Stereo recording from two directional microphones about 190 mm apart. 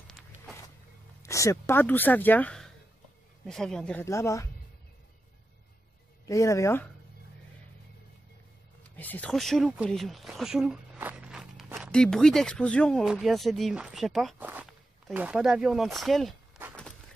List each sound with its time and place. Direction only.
1.2 s speech: 15° left (ahead or behind)
6.2 s speech: 15° left (ahead or behind)
8.8 s speech: 10° left (ahead or behind)